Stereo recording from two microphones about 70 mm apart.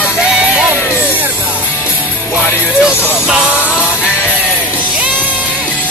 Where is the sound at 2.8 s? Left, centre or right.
Centre.